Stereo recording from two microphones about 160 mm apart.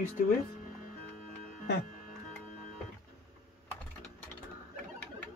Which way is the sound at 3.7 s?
10° left (ahead or behind).